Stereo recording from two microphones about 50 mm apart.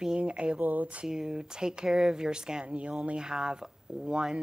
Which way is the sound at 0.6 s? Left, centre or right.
Right.